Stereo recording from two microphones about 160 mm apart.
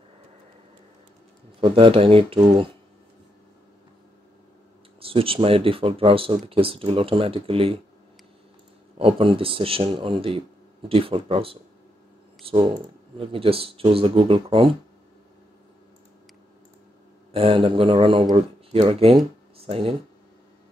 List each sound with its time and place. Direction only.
1.6 s speech: 35° right (ahead or behind)
5.0 s speech: 35° right (ahead or behind)
8.9 s speech: 35° right (ahead or behind)
17.3 s speech: 35° right (ahead or behind)